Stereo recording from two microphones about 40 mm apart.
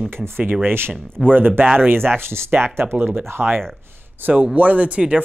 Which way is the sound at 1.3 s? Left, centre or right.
Right.